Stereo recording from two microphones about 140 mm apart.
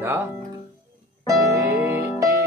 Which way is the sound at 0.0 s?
15° right (ahead or behind).